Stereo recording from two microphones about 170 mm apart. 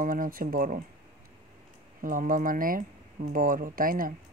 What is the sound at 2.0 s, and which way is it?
Speech, 55° right (ahead or behind).